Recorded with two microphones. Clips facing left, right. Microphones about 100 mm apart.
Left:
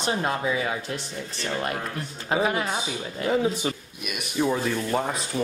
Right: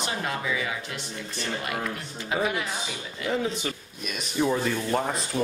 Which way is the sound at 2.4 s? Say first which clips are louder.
Left 3 dB; 40° left (ahead or behind).